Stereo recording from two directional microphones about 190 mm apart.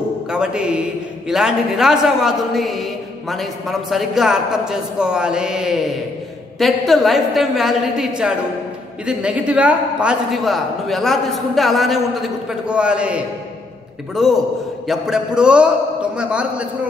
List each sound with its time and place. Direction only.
0.3 s a man's voice: 5° right (ahead or behind)